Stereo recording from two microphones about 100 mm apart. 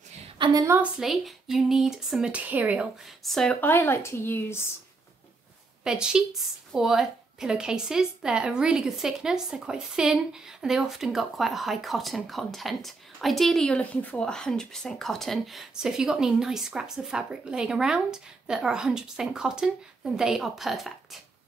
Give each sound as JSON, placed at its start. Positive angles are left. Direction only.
{"t": 0.4, "sound": "a woman's voice", "side_deg": -40}
{"t": 0.9, "sound": "speech", "side_deg": 0}
{"t": 3.3, "sound": "a woman's voice", "side_deg": 5}
{"t": 3.6, "sound": "speech", "side_deg": 20}
{"t": 5.9, "sound": "a woman's voice", "side_deg": -5}